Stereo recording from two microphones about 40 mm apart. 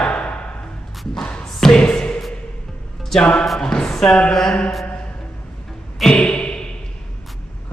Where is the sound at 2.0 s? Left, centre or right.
Centre.